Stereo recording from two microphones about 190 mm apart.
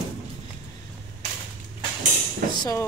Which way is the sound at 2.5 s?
20° left (ahead or behind).